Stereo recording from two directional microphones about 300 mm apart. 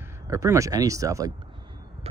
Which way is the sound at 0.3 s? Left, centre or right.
Centre.